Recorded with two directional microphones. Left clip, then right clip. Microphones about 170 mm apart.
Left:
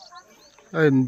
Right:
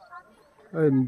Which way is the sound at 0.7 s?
Centre (ahead or behind).